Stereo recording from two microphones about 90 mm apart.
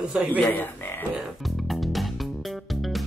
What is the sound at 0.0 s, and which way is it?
Speech, 15° right (ahead or behind).